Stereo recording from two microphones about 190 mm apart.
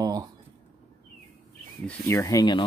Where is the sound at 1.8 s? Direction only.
15° left (ahead or behind).